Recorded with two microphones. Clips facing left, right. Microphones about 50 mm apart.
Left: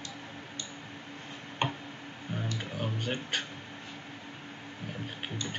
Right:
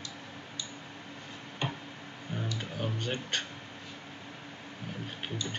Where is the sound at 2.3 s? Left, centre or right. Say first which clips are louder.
Left 1 dB; centre.